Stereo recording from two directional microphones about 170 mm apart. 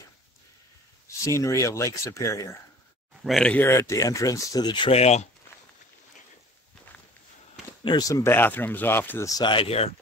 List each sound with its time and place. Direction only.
1.0 s speech: 20° left (ahead or behind)
3.3 s speech: 5° left (ahead or behind); by 5.3 s 40° left (ahead or behind)
7.8 s speech: 25° left (ahead or behind)